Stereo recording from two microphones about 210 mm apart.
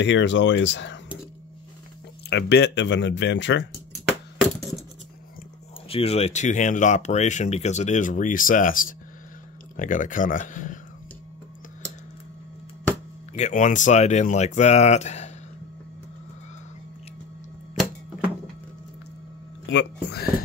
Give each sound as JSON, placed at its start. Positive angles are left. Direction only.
{"t": 0.0, "sound": "speech", "side_deg": 60}
{"t": 2.2, "sound": "speech", "side_deg": 55}
{"t": 4.4, "sound": "a sound", "side_deg": 0}
{"t": 5.9, "sound": "speech", "side_deg": 30}
{"t": 13.3, "sound": "speech", "side_deg": 35}
{"t": 19.6, "sound": "speech", "side_deg": 60}